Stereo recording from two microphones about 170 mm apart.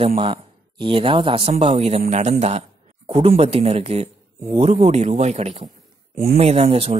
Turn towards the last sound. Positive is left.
turn(degrees=-35)  # may be behind; listen again after turning